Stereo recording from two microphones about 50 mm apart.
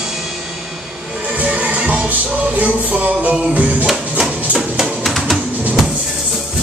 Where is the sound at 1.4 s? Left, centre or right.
Right.